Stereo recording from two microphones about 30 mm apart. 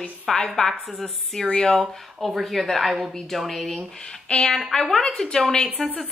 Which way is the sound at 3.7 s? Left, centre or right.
Left.